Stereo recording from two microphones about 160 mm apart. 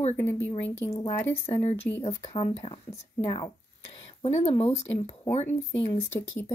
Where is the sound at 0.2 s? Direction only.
15° left (ahead or behind).